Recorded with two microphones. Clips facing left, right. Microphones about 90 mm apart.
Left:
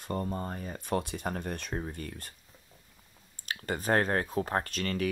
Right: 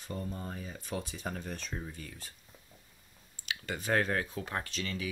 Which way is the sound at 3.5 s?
45° left (ahead or behind).